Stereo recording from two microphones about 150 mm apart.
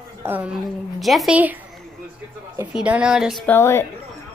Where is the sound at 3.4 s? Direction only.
15° left (ahead or behind).